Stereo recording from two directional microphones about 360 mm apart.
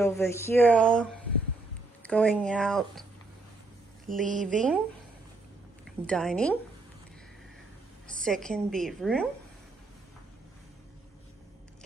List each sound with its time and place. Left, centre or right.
0.0 s speech: centre
4.3 s speech: right
4.6 s speech: centre
5.9 s speech: centre
8.2 s speech: centre